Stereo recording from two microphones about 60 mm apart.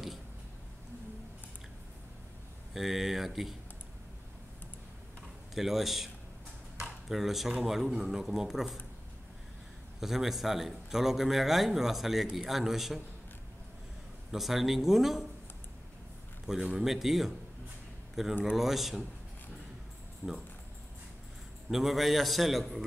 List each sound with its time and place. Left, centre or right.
2.7 s a man's voice: centre
5.5 s a man's voice: centre
6.8 s a sound: centre
7.6 s a man's voice: centre
9.9 s a man's voice: centre
14.3 s a man's voice: centre
16.7 s a man's voice: centre
18.4 s a man's voice: centre
20.2 s speech: right
21.6 s a man's voice: centre